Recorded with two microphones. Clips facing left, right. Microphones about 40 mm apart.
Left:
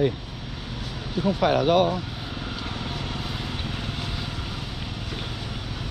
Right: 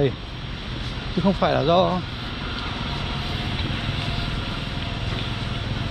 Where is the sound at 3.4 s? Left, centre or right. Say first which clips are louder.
Right 4 dB; right.